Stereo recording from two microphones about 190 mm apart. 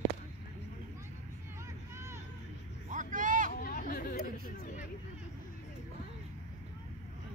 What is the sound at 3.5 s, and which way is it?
Chatter, 50° left (ahead or behind).